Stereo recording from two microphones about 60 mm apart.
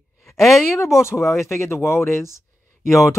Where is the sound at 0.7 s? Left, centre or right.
Left.